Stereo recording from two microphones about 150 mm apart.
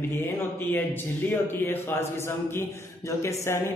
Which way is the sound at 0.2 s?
10° left (ahead or behind).